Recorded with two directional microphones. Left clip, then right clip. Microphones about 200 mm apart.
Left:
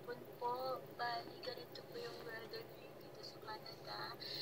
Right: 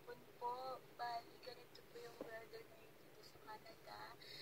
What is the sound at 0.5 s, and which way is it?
Synthetic singing, 25° right (ahead or behind).